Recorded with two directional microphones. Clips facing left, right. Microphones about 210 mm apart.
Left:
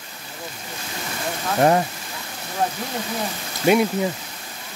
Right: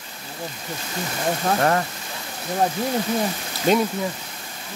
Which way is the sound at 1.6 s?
20° left (ahead or behind).